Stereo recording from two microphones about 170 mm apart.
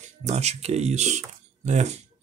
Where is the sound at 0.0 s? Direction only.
40° right (ahead or behind).